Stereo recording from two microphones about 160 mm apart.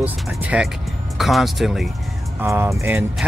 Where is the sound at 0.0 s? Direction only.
10° right (ahead or behind).